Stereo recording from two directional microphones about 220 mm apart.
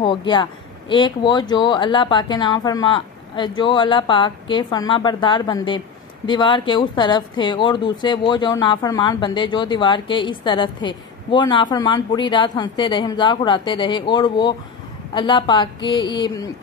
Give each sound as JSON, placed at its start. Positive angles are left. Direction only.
{"t": 0.0, "sound": "speech", "side_deg": 20}